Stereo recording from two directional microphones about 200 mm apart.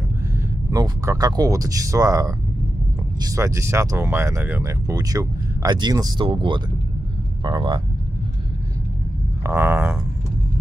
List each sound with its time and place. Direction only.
0.7 s speech: 15° right (ahead or behind)
9.4 s speech: 10° right (ahead or behind)